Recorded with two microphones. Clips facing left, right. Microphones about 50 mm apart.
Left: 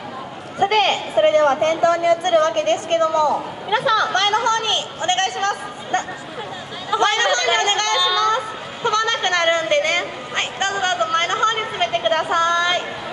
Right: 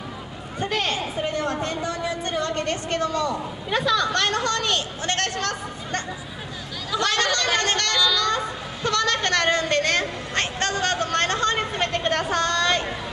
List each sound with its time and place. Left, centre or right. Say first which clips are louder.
0.6 s speech: left 8 dB; left
6.9 s chatter: left 5 dB; left